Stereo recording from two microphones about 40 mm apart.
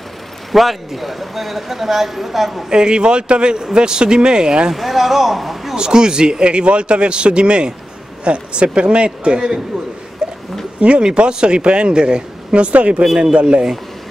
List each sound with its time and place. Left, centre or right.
0.5 s speech: centre
2.7 s speech: right
4.7 s speech: centre
5.8 s speech: centre
10.2 s a sound: right
10.8 s speech: right